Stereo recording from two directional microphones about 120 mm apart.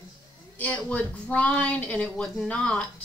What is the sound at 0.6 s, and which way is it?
Speech, 10° left (ahead or behind).